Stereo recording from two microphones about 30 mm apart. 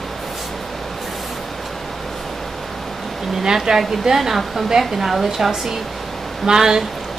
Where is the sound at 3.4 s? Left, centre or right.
Right.